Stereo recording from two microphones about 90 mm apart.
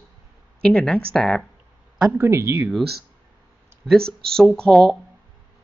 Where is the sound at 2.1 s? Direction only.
30° right (ahead or behind).